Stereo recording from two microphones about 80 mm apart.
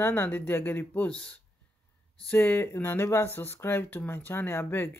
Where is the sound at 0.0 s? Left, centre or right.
Left.